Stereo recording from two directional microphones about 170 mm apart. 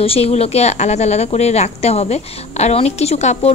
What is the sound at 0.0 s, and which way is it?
A woman's voice, 35° left (ahead or behind).